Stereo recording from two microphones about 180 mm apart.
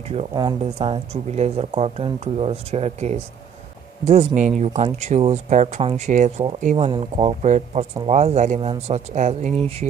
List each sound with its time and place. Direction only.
0.3 s speech: 20° right (ahead or behind)
0.7 s speech: 30° right (ahead or behind)
6.9 s speech: 30° right (ahead or behind)